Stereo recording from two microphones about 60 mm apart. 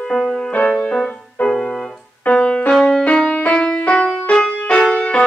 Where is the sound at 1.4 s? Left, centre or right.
Centre.